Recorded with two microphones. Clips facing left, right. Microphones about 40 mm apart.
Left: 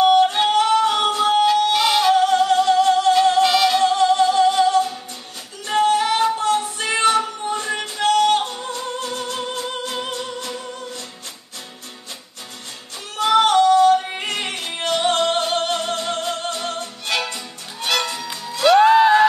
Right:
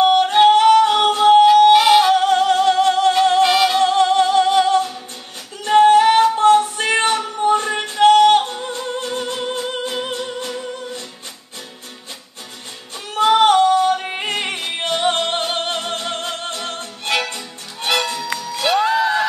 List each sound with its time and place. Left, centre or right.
0.0 s yodeling: right
0.5 s music: right
1.7 s music: centre
2.1 s music: right
3.4 s music: centre
3.8 s music: right
5.7 s female singing: right
6.3 s music: right; by 10.5 s centre
13.2 s yodeling: right
17.1 s music: right
18.8 s music: left